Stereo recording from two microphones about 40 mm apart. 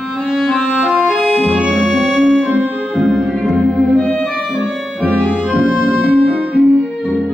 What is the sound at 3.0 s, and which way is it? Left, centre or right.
Music, centre.